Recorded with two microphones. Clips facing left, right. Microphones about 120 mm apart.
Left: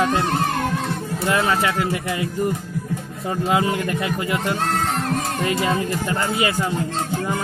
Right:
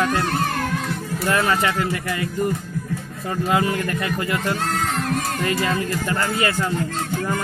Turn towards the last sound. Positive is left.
turn(degrees=15)  # may be behind; listen again after turning